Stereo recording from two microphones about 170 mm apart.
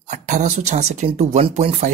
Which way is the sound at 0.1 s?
45° right (ahead or behind).